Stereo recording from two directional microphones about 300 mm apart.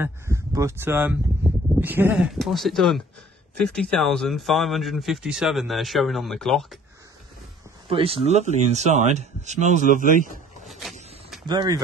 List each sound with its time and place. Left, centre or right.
0.0 s speech: centre
7.9 s speech: centre
10.6 s a sound: centre
11.4 s speech: centre